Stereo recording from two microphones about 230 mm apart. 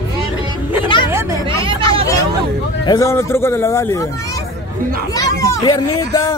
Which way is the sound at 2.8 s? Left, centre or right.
Centre.